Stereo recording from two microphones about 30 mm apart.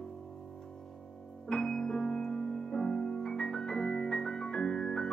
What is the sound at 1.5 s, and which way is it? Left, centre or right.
Music, left.